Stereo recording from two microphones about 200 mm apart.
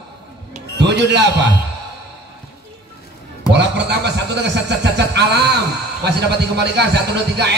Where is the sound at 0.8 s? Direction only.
60° right (ahead or behind).